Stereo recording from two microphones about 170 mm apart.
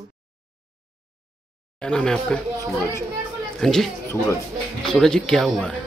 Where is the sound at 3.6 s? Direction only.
5° left (ahead or behind).